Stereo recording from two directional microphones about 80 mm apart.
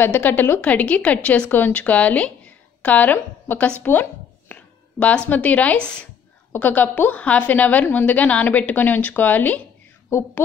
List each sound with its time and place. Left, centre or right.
0.0 s speech: left
3.8 s a sound: left
5.3 s a woman's voice: centre